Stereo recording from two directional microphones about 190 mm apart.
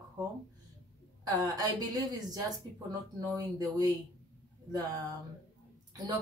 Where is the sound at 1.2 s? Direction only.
20° right (ahead or behind).